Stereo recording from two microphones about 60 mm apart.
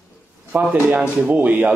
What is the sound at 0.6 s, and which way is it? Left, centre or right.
Speech, centre.